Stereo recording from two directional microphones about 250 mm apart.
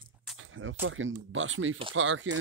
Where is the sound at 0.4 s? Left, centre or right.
Right.